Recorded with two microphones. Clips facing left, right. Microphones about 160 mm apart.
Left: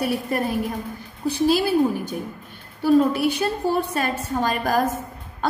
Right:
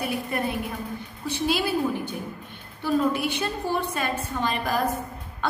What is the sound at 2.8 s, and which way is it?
A woman's voice, 40° left (ahead or behind).